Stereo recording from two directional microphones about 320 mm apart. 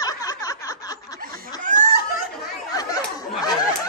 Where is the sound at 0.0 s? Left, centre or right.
Centre.